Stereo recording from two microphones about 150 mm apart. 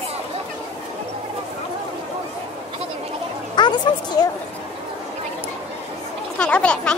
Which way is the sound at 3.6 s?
30° left (ahead or behind).